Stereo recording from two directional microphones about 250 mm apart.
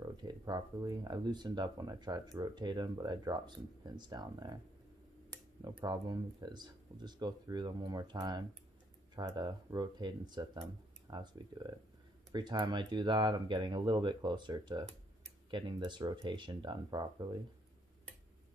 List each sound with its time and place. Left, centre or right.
0.0 s speech: centre